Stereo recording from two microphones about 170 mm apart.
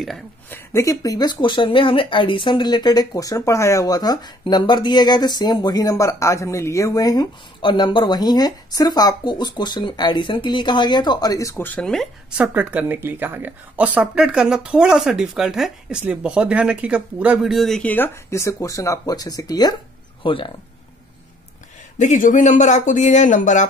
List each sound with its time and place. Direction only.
0.5 s speech: 15° left (ahead or behind)
21.9 s speech: 45° left (ahead or behind)